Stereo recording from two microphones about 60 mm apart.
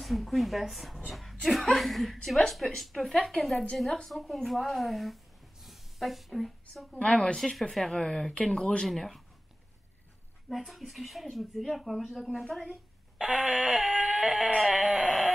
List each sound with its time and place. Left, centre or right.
0.0 s speech: centre
7.0 s speech: centre
7.3 s speech: centre
8.8 s speech: centre
10.5 s speech: centre